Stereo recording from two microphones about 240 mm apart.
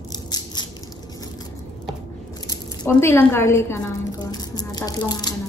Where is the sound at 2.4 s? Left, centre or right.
Centre.